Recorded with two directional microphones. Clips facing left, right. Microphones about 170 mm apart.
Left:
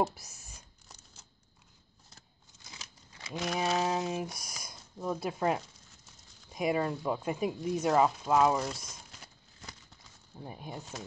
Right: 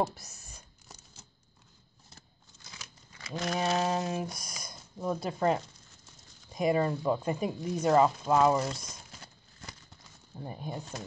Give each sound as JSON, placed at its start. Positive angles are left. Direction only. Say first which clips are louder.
{"t": 0.0, "sound": "speech", "louder": "even", "side_deg": 10}
{"t": 2.7, "sound": "a sound", "louder": "even", "side_deg": 25}
{"t": 3.3, "sound": "speech", "louder": "right 1 dB", "side_deg": 5}